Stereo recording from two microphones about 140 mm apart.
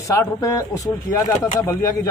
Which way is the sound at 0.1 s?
20° left (ahead or behind).